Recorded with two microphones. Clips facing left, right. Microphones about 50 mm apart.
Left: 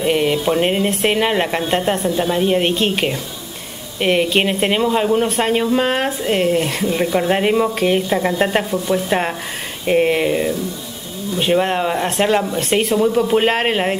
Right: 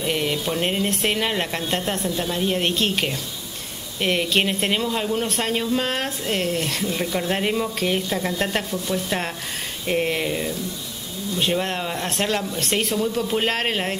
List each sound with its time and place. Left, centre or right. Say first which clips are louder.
0.0 s speech: left 7 dB; centre